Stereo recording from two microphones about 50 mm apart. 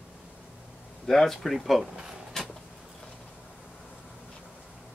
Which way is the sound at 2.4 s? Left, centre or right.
Centre.